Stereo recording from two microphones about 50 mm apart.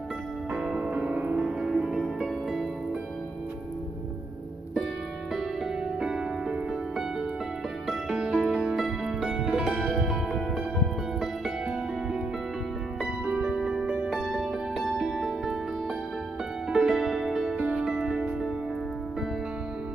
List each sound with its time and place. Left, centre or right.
0.7 s music: right
1.3 s music: centre
5.9 s music: centre
8.3 s music: centre
9.4 s music: right
9.8 s music: centre
13.3 s music: right
13.6 s music: centre
16.7 s music: centre